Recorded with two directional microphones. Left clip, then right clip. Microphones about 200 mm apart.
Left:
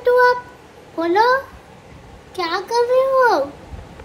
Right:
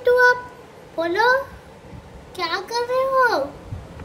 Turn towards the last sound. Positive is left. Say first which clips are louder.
# left 4 dB
turn(degrees=15)  # may be behind; listen again after turning